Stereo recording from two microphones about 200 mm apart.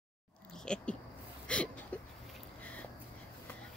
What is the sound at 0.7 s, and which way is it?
Speech, 5° left (ahead or behind).